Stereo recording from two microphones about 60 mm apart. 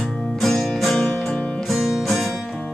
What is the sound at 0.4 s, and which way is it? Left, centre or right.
Music, centre.